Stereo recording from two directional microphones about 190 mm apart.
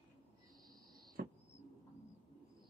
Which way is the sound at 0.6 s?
20° right (ahead or behind).